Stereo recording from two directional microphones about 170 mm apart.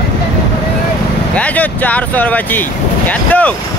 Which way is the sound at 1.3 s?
10° left (ahead or behind).